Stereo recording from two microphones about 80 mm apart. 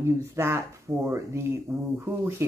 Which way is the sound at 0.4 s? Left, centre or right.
Right.